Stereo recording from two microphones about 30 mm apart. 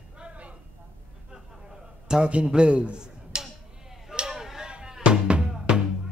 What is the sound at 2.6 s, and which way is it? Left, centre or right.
Speech, right.